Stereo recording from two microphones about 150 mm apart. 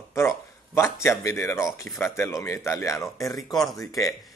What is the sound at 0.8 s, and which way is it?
Speech, 20° left (ahead or behind).